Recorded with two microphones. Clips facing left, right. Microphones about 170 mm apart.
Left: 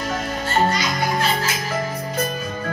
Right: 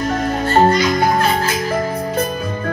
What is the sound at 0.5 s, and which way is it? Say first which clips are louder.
Music: right 7 dB; 55° right (ahead or behind).